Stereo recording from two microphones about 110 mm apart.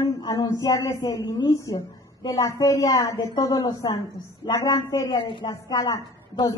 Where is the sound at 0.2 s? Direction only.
35° left (ahead or behind).